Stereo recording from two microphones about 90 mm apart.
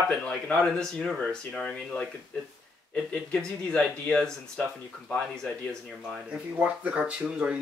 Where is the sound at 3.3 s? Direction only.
10° left (ahead or behind).